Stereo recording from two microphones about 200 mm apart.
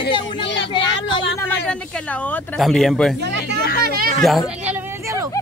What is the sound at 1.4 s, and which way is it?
A woman's voice, 5° left (ahead or behind).